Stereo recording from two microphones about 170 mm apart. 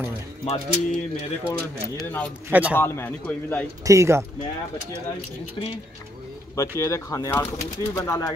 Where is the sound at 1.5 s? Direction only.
5° left (ahead or behind).